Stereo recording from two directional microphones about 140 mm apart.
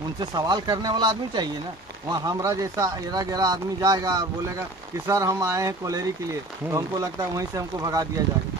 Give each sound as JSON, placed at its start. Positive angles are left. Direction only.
{"t": 0.2, "sound": "speech", "side_deg": -30}